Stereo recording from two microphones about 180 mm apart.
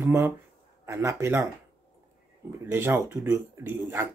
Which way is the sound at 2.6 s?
10° right (ahead or behind).